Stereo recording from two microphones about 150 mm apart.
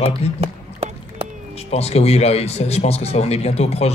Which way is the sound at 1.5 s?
45° left (ahead or behind).